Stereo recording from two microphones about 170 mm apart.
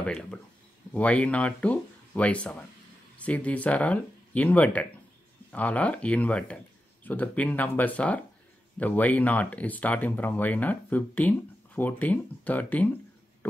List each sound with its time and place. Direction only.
0.0 s speech: 5° left (ahead or behind)